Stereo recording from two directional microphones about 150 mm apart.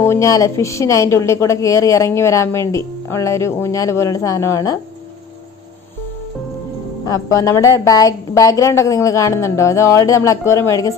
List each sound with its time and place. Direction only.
0.0 s a woman's voice: 20° left (ahead or behind)
7.1 s a woman's voice: 20° left (ahead or behind)